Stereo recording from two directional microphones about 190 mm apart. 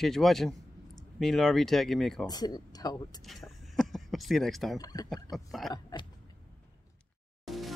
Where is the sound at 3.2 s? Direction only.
Centre (ahead or behind).